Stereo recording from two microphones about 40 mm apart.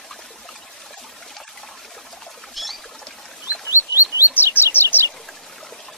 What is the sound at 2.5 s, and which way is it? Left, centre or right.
Rodents, centre.